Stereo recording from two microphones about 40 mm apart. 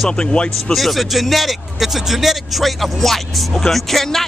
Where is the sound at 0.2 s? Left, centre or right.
Left.